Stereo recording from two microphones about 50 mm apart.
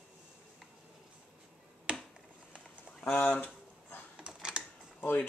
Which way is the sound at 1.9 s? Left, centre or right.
Right.